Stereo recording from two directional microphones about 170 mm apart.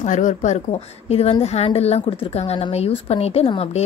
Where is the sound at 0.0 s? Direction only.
45° left (ahead or behind).